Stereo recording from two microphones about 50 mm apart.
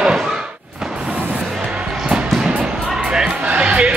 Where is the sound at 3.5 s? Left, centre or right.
Right.